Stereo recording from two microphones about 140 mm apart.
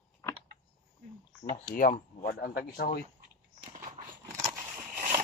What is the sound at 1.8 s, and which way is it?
Speech, 90° left.